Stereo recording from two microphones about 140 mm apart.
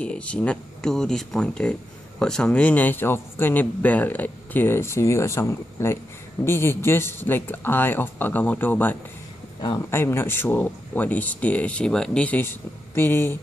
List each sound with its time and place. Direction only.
0.0 s speech: 10° left (ahead or behind)